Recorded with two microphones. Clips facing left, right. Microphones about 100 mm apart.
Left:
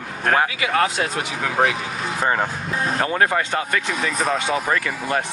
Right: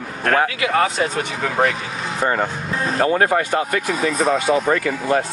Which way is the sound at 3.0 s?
35° right (ahead or behind).